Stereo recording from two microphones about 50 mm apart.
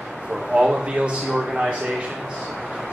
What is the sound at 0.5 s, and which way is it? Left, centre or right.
Speech, right.